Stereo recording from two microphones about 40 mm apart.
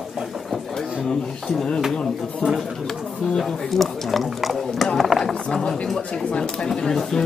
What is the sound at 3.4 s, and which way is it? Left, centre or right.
Speech, centre.